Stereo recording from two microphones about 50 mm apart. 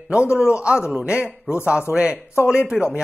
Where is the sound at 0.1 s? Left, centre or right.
Centre.